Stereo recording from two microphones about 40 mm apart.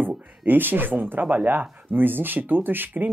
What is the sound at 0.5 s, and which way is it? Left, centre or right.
Speech, right.